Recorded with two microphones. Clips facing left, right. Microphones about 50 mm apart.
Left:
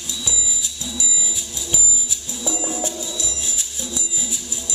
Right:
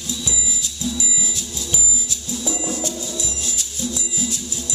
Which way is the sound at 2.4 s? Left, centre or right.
Centre.